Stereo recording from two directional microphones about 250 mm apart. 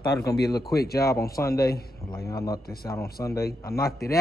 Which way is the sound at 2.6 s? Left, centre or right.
Left.